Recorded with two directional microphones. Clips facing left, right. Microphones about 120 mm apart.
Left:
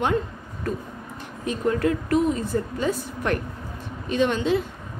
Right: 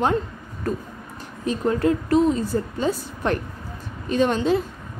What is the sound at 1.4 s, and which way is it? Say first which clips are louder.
A woman's voice: right 2 dB; 30° right (ahead or behind).